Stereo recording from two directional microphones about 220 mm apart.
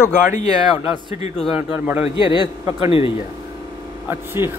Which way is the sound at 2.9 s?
25° left (ahead or behind).